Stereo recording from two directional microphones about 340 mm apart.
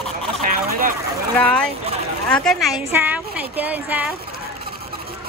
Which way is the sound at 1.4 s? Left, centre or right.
Centre.